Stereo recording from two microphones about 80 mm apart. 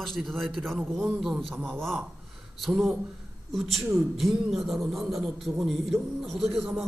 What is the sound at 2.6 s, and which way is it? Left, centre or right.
A man's voice, centre.